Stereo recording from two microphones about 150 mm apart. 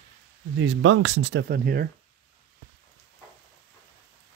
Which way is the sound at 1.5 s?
80° right.